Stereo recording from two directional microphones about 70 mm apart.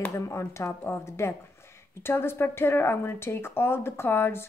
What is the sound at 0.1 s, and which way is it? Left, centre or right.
Speech, left.